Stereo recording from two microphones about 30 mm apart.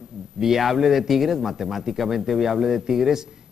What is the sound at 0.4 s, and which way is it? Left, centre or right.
A man's voice, centre.